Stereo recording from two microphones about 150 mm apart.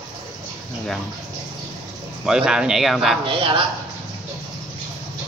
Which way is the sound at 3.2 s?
35° right (ahead or behind).